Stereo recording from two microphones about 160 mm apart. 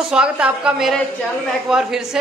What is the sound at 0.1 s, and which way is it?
A woman's voice, 5° right (ahead or behind).